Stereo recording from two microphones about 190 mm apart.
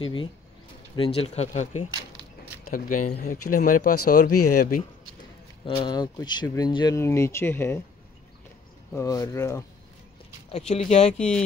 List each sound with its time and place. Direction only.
0.0 s speech: 25° left (ahead or behind)
2.6 s speech: 45° left (ahead or behind)
5.8 s speech: 20° left (ahead or behind)
8.9 s speech: 20° left (ahead or behind)
10.5 s speech: 35° left (ahead or behind)